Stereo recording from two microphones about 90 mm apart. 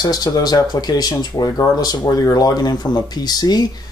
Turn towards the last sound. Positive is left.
turn(degrees=50)  # may be behind; listen again after turning